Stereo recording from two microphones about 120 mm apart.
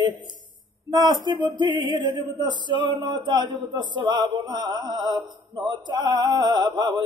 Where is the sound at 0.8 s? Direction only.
35° right (ahead or behind).